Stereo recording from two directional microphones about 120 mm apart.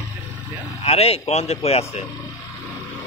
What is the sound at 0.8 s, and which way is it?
A man's voice, 55° left (ahead or behind).